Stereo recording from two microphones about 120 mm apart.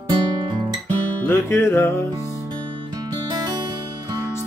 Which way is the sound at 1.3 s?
20° left (ahead or behind).